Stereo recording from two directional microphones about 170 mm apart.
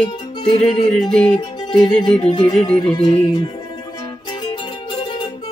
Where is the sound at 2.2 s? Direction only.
30° left (ahead or behind).